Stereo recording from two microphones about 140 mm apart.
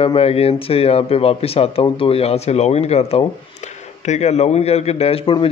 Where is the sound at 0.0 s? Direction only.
45° left (ahead or behind).